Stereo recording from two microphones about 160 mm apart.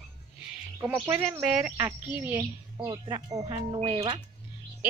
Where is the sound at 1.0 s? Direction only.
15° right (ahead or behind); by 4.2 s 35° right (ahead or behind).